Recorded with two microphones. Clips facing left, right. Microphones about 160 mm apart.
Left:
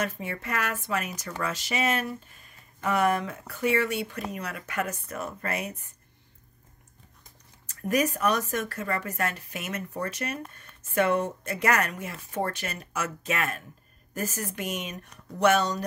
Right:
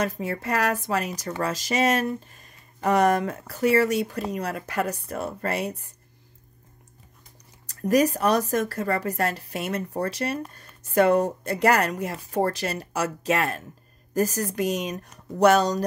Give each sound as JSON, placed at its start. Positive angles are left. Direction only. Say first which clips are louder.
{"t": 0.0, "sound": "speech", "louder": "right 5 dB", "side_deg": -35}
{"t": 7.9, "sound": "speech", "louder": "right 5 dB", "side_deg": -35}